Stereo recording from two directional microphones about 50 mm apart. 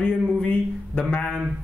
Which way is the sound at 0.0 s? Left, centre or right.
Left.